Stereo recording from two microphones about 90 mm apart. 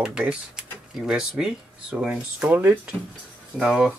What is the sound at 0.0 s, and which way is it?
Speech, 10° right (ahead or behind).